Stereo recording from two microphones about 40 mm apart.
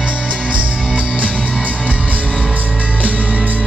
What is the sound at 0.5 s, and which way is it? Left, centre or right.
Music, right.